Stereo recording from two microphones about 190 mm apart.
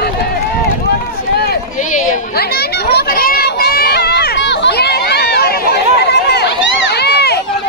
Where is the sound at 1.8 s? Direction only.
40° left (ahead or behind).